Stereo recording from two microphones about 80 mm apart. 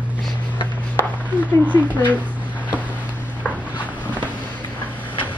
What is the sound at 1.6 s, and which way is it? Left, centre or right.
Speech, left.